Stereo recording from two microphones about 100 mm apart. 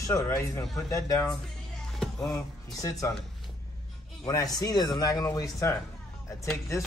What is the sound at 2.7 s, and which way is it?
Speech, 35° left (ahead or behind).